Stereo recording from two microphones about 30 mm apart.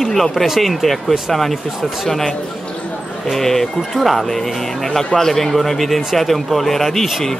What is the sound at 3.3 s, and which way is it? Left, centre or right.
Speech, centre.